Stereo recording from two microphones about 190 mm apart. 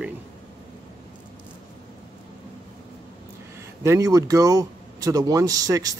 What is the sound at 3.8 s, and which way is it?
Speech, 15° right (ahead or behind).